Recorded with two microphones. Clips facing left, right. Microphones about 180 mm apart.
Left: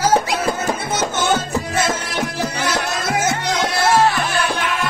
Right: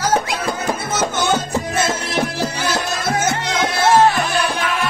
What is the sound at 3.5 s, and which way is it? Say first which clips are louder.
Music: right 2 dB; 20° right (ahead or behind).